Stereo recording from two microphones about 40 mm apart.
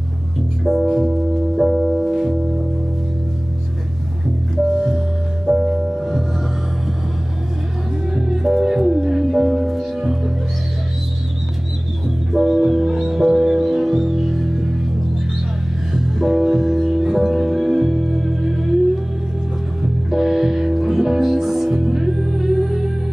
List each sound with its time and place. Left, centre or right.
0.9 s music: centre
4.7 s music: centre
8.1 s music: centre
12.3 s music: centre
15.9 s music: centre
19.8 s music: centre